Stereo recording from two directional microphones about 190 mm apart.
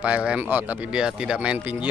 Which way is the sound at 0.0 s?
5° right (ahead or behind).